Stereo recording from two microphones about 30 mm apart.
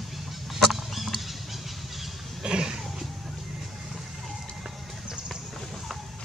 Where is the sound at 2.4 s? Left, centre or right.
Right.